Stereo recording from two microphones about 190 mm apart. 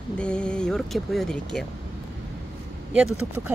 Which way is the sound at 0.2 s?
5° left (ahead or behind).